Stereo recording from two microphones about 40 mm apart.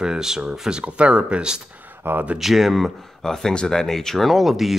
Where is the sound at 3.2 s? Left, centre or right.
Centre.